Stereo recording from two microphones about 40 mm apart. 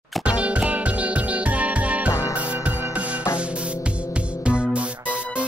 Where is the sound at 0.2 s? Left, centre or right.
Right.